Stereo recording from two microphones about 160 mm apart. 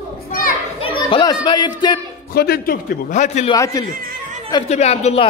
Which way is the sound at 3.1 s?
45° left (ahead or behind).